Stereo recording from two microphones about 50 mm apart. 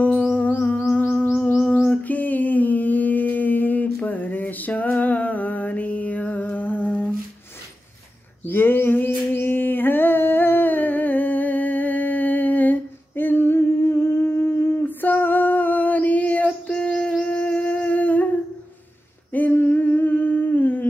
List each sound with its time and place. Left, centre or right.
0.0 s music: left
1.9 s humming: left
8.5 s humming: left
14.8 s female singing: left
16.6 s a sound: left
17.2 s wind instrument: left
17.6 s humming: left
19.3 s humming: left